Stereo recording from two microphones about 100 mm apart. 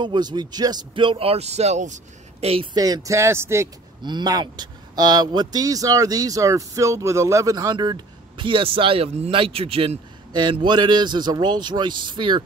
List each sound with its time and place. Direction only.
0.0 s speech: 50° right (ahead or behind); by 1.8 s 90° right
2.4 s speech: 75° right (ahead or behind)
2.7 s speech: 40° right (ahead or behind)
4.0 s speech: 45° right (ahead or behind); by 9.9 s 75° right (ahead or behind)
10.3 s speech: 50° right (ahead or behind)